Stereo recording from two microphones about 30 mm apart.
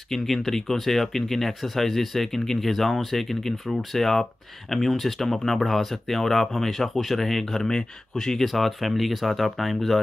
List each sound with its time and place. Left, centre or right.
0.1 s speech: centre
7.6 s speech: centre
8.5 s speech: centre